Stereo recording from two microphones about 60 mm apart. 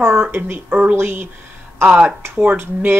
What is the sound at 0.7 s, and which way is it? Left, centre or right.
Speech, right.